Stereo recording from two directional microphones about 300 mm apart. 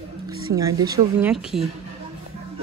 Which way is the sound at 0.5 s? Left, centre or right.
Centre.